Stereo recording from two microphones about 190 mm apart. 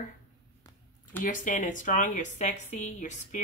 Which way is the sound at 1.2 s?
45° left (ahead or behind).